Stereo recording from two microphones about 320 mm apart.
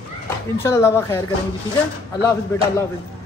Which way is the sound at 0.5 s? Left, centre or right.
Centre.